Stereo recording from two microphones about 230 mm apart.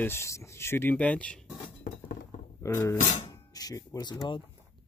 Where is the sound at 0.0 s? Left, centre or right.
Centre.